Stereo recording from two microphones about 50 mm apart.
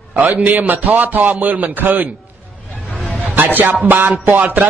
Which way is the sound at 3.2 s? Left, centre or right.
Right.